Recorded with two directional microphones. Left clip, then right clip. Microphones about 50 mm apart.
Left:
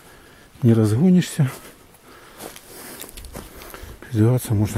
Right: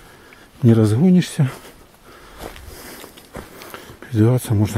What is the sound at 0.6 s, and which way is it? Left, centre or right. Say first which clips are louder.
Speech: right 3 dB; centre.